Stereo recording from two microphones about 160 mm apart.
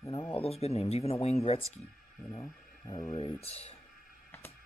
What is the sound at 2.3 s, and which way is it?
Speech, 25° left (ahead or behind).